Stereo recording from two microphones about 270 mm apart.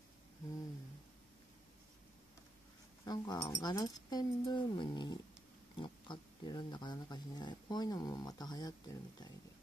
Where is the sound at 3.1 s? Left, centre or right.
Centre.